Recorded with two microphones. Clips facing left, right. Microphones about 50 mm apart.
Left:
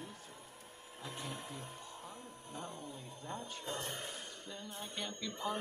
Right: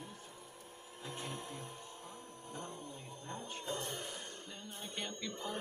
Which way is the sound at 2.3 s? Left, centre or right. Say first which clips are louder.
Right 1 dB; right.